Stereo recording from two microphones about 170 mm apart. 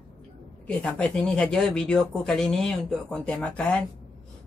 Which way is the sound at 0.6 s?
5° left (ahead or behind).